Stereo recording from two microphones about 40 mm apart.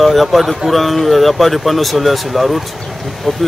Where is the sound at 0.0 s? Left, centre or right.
Centre.